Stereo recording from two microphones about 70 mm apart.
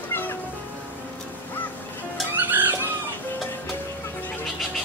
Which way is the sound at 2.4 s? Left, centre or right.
Right.